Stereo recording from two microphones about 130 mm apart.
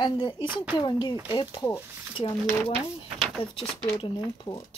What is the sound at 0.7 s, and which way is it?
Speech, 35° left (ahead or behind).